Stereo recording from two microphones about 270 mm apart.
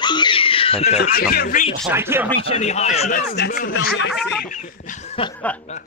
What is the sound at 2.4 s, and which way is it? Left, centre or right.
Speech, left.